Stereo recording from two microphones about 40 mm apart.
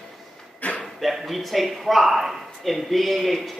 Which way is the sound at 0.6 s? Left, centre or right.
Left.